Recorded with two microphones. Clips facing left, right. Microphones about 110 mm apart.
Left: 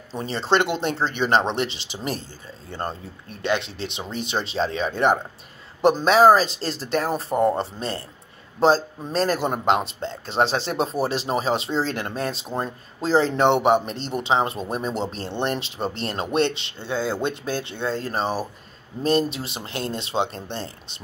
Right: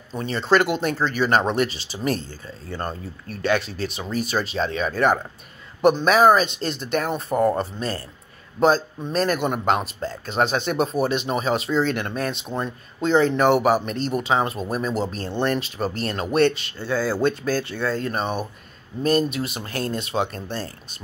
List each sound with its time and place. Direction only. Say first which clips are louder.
0.1 s speech: right 2 dB; 30° left (ahead or behind)